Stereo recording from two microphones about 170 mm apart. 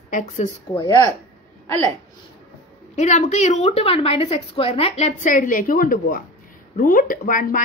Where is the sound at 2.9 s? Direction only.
45° left (ahead or behind).